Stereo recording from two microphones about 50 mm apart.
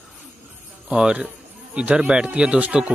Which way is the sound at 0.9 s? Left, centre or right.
Centre.